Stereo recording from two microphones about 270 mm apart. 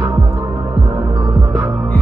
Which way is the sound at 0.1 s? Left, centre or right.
Centre.